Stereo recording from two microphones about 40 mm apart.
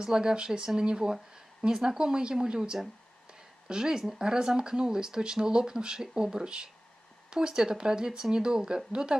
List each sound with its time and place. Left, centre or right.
0.0 s speech: centre